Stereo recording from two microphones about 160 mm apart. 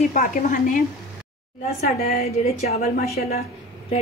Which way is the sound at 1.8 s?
40° left (ahead or behind).